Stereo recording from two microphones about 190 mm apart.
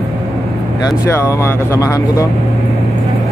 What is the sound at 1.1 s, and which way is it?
Speech, 15° left (ahead or behind).